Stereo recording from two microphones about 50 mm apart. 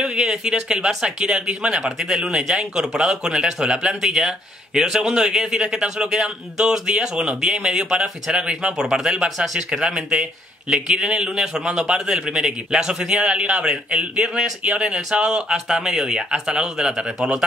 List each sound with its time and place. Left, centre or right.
0.0 s speech: centre